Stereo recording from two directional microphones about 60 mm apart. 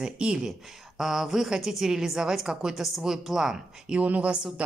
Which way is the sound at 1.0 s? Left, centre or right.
Centre.